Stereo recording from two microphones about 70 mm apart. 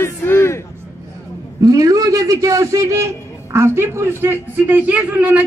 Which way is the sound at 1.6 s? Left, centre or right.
Right.